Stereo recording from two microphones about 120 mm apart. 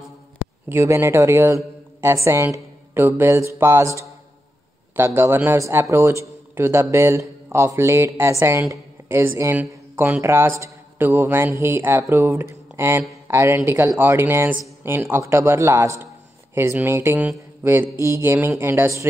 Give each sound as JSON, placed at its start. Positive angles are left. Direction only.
{"t": 0.7, "sound": "a man's voice", "side_deg": -20}